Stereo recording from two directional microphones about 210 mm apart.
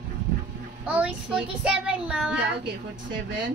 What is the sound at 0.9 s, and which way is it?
Child singing, 5° right (ahead or behind).